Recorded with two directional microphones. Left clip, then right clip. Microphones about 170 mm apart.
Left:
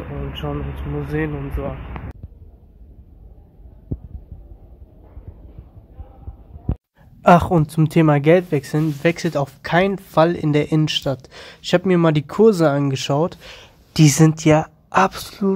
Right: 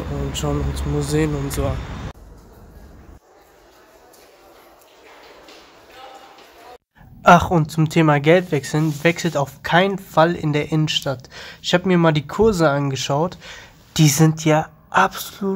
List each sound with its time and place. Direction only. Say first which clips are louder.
0.3 s speech: right 4 dB; 10° right (ahead or behind)
7.2 s speech: right 1 dB; 25° left (ahead or behind)